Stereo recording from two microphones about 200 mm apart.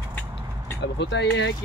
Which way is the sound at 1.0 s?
60° left (ahead or behind).